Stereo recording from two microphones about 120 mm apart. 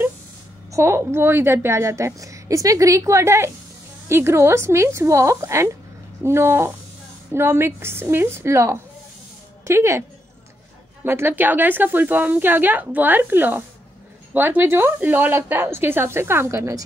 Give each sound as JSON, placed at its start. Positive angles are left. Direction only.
{"t": 0.7, "sound": "a woman's voice", "side_deg": -25}
{"t": 11.1, "sound": "a woman's voice", "side_deg": -20}